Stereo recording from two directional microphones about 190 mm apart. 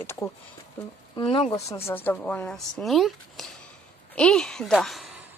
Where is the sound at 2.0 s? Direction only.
5° left (ahead or behind).